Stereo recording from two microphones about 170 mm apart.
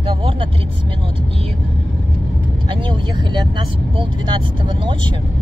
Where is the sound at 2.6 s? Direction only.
30° right (ahead or behind).